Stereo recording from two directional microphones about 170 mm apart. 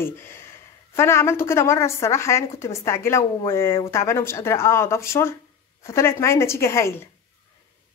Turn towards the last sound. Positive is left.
turn(degrees=15)  # may be behind; listen again after turning